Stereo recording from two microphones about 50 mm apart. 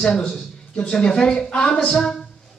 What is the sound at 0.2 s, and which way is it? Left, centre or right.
A man's voice, centre.